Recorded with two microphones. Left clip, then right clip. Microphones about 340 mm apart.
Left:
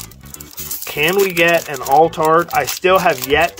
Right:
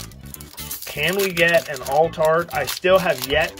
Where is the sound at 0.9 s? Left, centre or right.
Centre.